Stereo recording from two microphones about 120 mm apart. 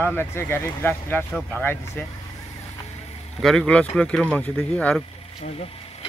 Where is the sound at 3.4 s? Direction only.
5° left (ahead or behind).